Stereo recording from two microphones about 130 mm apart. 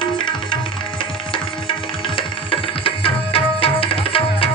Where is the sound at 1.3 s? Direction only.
40° left (ahead or behind).